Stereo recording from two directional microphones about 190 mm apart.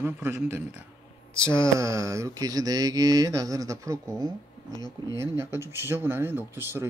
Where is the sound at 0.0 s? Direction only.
10° right (ahead or behind).